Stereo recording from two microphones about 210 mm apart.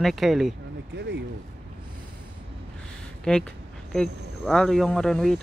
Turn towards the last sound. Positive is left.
turn(degrees=0)  # may be behind; listen again after turning